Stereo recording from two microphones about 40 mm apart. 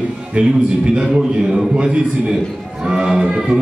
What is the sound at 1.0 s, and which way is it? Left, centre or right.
A man's voice, centre.